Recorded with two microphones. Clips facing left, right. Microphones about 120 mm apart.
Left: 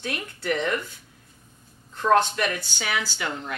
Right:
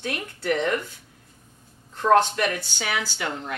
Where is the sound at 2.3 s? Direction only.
45° right (ahead or behind).